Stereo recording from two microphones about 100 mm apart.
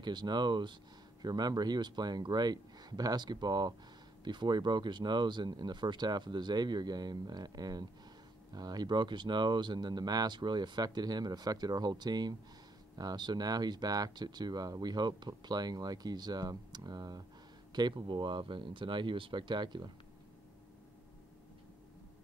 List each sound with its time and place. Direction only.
0.0 s speech: 45° right (ahead or behind)